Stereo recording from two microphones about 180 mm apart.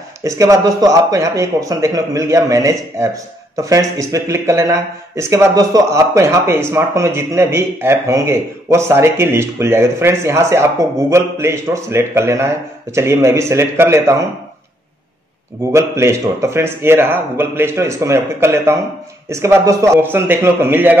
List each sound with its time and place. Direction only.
0.2 s speech: 20° right (ahead or behind)
15.7 s speech: 15° right (ahead or behind)